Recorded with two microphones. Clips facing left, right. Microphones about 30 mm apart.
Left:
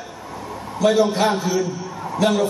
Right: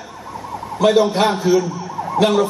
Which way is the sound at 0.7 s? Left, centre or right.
Right.